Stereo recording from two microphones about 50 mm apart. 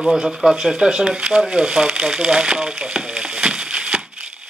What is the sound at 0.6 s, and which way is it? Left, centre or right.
Speech, centre.